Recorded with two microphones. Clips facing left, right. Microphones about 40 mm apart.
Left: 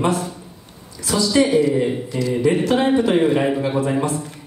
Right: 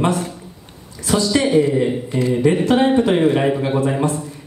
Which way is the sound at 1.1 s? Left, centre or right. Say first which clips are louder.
Even; right.